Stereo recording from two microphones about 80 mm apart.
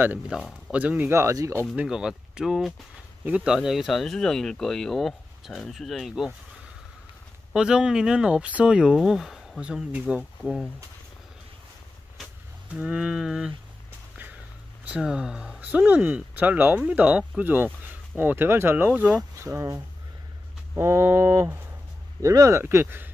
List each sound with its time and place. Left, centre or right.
0.3 s speech: centre
0.7 s speech: centre
1.1 s speech: right
1.9 s speech: centre
3.3 s speech: centre
3.5 s speech: centre
7.5 s speech: centre
10.4 s speech: centre
12.7 s speech: centre
14.9 s speech: centre
15.7 s speech: right
18.9 s speech: centre
19.3 s speech: right
22.6 s speech: right